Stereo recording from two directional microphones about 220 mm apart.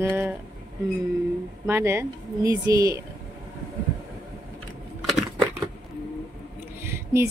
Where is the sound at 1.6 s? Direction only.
10° right (ahead or behind).